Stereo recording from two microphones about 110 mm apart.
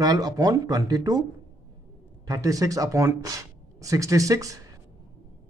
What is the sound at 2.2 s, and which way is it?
Speech, 30° right (ahead or behind).